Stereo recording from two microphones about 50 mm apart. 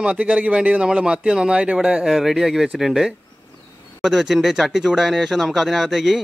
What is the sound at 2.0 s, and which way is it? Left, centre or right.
Speech, centre.